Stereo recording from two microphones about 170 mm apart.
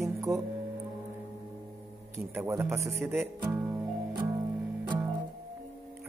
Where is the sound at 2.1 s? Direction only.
15° right (ahead or behind).